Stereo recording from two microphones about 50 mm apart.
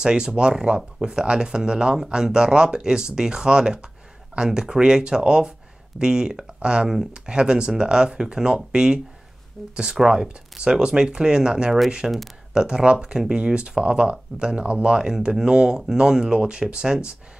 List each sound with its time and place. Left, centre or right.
0.0 s speech: centre
9.6 s speech: centre
9.9 s speech: centre